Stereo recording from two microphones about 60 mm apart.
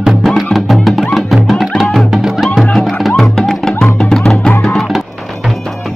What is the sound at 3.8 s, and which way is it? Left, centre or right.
Music, centre.